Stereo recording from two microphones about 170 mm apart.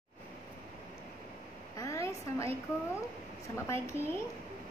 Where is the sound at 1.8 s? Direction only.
20° left (ahead or behind).